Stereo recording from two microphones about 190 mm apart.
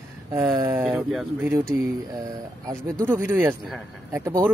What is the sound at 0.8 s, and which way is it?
Speech, centre (ahead or behind).